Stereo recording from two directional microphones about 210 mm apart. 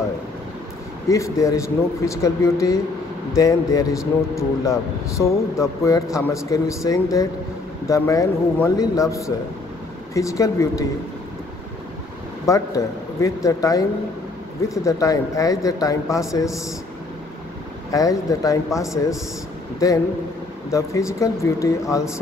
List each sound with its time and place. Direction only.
1.0 s speech: 15° left (ahead or behind)
12.4 s speech: 15° left (ahead or behind)
17.9 s speech: 15° left (ahead or behind)